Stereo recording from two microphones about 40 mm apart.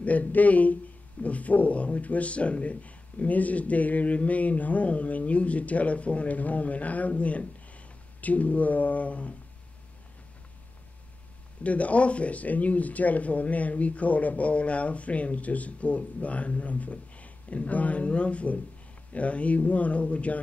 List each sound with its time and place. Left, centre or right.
0.0 s speech: left
11.6 s speech: left